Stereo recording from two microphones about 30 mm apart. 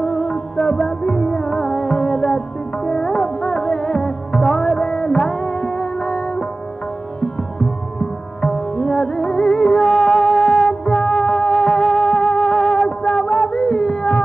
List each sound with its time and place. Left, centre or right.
0.0 s music: left
8.4 s music: left
9.8 s music: centre
12.8 s a sound: centre